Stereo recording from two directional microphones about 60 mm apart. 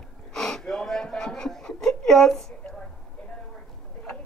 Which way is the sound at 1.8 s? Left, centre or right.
Centre.